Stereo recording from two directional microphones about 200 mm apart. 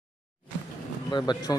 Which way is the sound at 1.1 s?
20° left (ahead or behind).